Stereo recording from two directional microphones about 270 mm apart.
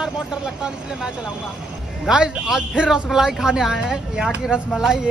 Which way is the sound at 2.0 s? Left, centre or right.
Centre.